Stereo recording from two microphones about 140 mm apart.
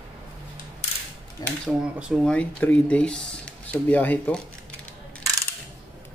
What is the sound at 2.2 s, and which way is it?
Speech, 10° left (ahead or behind).